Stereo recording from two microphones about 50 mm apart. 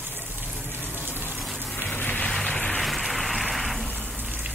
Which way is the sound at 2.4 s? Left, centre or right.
Centre.